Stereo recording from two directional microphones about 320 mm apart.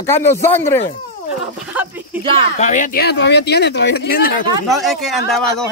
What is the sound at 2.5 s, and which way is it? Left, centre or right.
Speech, left.